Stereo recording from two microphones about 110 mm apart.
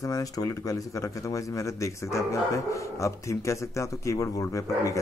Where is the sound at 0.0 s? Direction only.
35° left (ahead or behind).